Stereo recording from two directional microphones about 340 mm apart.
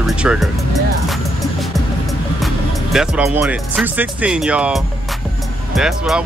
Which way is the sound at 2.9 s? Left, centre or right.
Centre.